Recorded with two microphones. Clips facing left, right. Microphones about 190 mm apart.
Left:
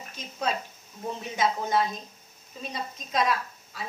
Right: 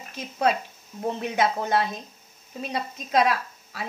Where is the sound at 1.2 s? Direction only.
65° right (ahead or behind).